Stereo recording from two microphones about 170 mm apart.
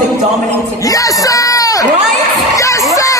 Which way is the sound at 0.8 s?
20° left (ahead or behind).